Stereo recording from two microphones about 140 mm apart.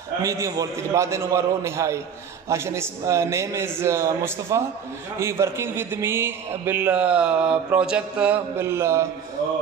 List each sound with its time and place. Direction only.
0.2 s a man's voice: 25° right (ahead or behind)